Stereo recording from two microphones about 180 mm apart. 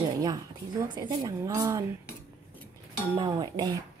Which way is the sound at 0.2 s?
20° right (ahead or behind).